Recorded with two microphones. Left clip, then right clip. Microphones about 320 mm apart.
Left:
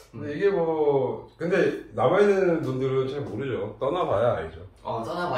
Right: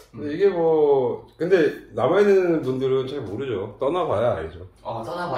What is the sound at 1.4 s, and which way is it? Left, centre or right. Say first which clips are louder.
Speech: right 4 dB; right.